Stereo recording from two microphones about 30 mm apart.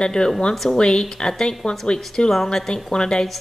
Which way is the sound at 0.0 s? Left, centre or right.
Left.